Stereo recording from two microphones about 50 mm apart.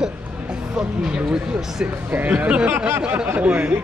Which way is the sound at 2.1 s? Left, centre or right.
Right.